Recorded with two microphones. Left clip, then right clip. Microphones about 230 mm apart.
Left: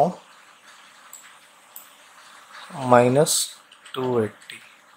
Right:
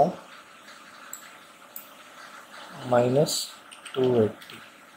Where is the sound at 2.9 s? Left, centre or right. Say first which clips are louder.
Left 6 dB; left.